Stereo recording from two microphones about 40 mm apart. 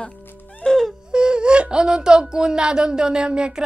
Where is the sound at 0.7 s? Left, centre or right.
Centre.